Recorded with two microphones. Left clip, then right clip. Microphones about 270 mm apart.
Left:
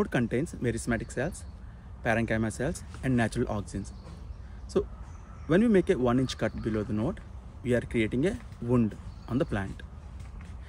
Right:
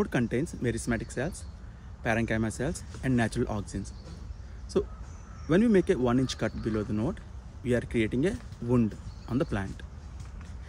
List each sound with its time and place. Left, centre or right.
0.0 s speech: centre